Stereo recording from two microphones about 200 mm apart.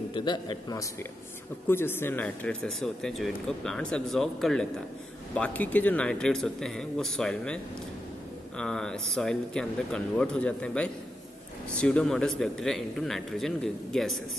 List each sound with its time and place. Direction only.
0.1 s a man's voice: 25° left (ahead or behind); by 14.2 s centre (ahead or behind)